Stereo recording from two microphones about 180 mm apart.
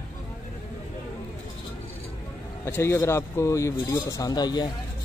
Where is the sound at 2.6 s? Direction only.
15° left (ahead or behind).